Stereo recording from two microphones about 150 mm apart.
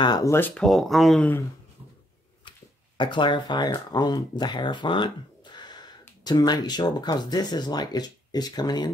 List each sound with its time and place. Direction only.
0.0 s speech: 25° left (ahead or behind)
0.6 s speech: centre (ahead or behind)
3.0 s speech: 30° left (ahead or behind)